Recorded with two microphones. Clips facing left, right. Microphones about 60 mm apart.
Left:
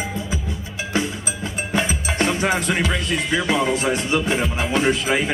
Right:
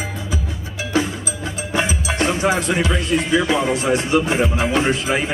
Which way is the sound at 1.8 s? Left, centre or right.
Left.